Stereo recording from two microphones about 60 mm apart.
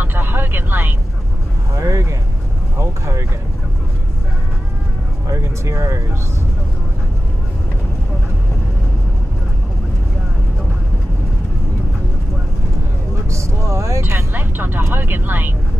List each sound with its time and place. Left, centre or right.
0.0 s vehicle: right
1.8 s vehicle: right
2.8 s a sound: right
5.3 s vehicle: right
13.3 s vehicle: right
14.3 s music: right